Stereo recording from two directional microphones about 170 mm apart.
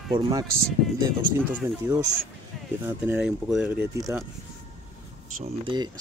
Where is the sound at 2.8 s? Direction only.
10° right (ahead or behind).